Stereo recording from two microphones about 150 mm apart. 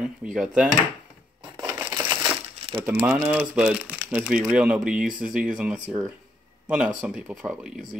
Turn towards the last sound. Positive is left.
turn(degrees=-5)  # may be behind; listen again after turning